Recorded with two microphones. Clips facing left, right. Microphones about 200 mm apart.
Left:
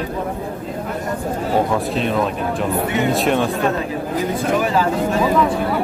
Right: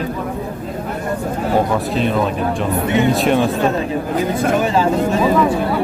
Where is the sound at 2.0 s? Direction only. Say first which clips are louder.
Right 2 dB; centre (ahead or behind).